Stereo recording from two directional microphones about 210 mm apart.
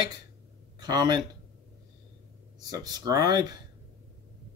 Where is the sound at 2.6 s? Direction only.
20° right (ahead or behind).